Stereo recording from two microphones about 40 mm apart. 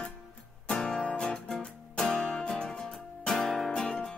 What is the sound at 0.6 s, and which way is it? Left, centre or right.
Music, centre.